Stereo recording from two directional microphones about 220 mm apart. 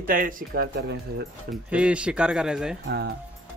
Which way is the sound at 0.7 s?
50° right (ahead or behind).